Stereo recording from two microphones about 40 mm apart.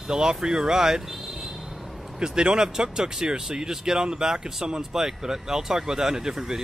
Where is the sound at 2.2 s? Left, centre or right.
Centre.